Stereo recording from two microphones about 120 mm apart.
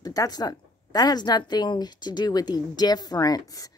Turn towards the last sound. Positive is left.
turn(degrees=30)  # may be behind; listen again after turning